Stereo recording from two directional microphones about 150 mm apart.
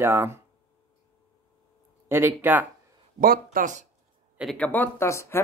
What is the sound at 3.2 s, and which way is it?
Speech, 70° right (ahead or behind).